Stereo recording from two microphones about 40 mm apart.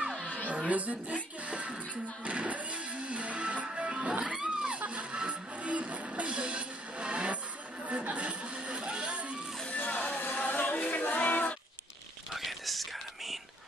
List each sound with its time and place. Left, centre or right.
0.7 s a woman's voice: right
1.4 s music: right
4.4 s a sound: centre
4.7 s music: right
7.8 s chatter: right
9.8 s a sound: left
12.3 s whispering: centre